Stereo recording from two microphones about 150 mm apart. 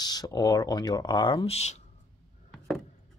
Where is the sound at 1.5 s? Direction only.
45° left (ahead or behind).